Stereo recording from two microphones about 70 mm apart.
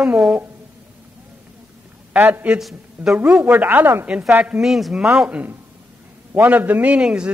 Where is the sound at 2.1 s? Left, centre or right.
Right.